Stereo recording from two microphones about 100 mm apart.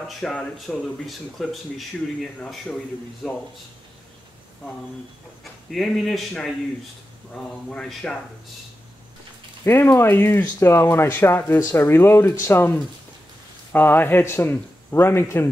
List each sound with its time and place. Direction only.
0.2 s a man's voice: 10° left (ahead or behind)
5.4 s a man's voice: 5° left (ahead or behind)
9.8 s speech: 20° left (ahead or behind)